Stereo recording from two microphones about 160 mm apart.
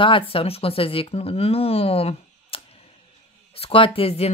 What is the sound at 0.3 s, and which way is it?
Speech, 35° left (ahead or behind).